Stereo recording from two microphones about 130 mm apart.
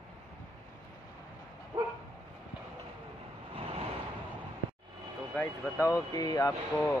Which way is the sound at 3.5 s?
50° right (ahead or behind).